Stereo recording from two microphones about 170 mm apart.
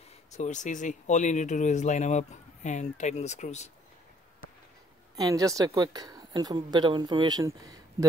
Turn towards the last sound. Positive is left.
turn(degrees=-20)  # may be behind; listen again after turning